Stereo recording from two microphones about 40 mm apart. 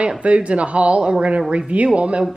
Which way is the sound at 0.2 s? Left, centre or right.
Right.